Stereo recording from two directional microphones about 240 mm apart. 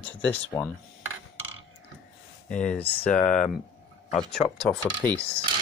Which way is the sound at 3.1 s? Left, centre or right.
Left.